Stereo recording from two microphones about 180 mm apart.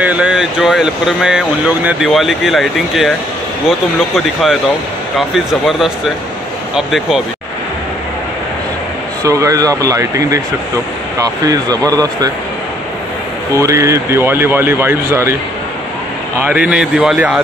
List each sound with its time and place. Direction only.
0.0 s speech: 5° right (ahead or behind)
5.3 s speech: centre (ahead or behind)
9.2 s speech: 20° right (ahead or behind)
13.6 s speech: 15° right (ahead or behind)
16.4 s speech: 5° right (ahead or behind)